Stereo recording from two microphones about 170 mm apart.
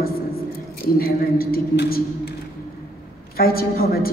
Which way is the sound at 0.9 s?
60° left (ahead or behind).